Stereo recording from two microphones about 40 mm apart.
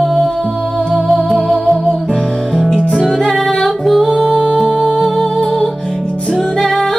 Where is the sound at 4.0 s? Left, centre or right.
Centre.